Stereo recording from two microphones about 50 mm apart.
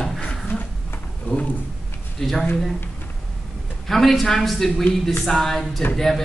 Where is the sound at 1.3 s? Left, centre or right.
Left.